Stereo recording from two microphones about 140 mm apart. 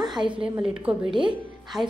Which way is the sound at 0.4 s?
5° right (ahead or behind).